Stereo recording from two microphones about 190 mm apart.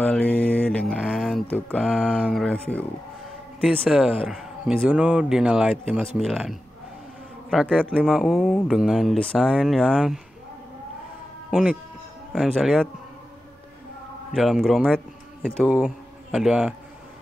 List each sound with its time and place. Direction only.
0.0 s mantra: 10° left (ahead or behind)
1.9 s speech: 5° right (ahead or behind)
11.5 s speech: 5° right (ahead or behind)
14.3 s speech: centre (ahead or behind)